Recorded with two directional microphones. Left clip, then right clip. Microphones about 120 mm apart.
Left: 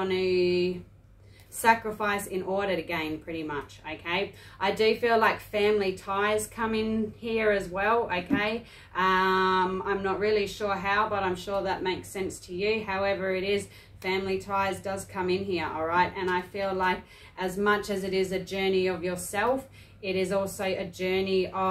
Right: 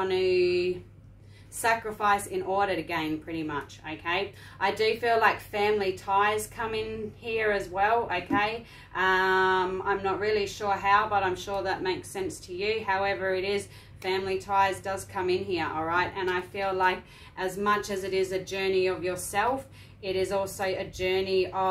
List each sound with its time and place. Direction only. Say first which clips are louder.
0.0 s a woman's voice: right 1 dB; 30° right (ahead or behind)
11.1 s a woman's voice: right 1 dB; 30° right (ahead or behind)
20.5 s a woman's voice: even; 20° right (ahead or behind)